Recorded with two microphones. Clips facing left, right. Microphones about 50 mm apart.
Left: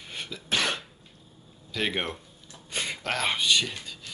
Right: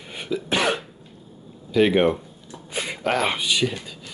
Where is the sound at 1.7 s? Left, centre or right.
Centre.